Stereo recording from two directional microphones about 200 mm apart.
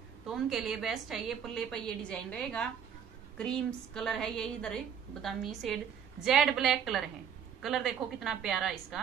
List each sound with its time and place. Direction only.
0.3 s a woman's voice: centre (ahead or behind)